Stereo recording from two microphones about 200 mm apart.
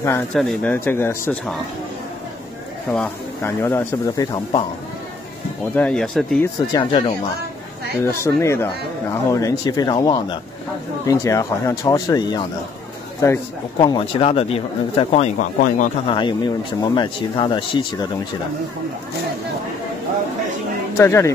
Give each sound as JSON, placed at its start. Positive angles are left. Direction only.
{"t": 0.3, "sound": "speech", "side_deg": 0}
{"t": 2.9, "sound": "speech", "side_deg": 10}
{"t": 5.8, "sound": "speech", "side_deg": 5}
{"t": 6.7, "sound": "a man's voice", "side_deg": 25}
{"t": 13.7, "sound": "a man's voice", "side_deg": 25}
{"t": 16.1, "sound": "a man's voice", "side_deg": 25}
{"t": 21.0, "sound": "speech", "side_deg": 15}